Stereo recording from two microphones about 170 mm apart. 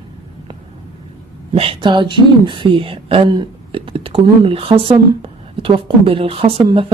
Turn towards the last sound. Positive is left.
turn(degrees=-30)  # may be behind; listen again after turning